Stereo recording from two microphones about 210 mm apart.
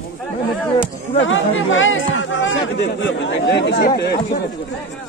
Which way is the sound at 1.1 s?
65° left (ahead or behind).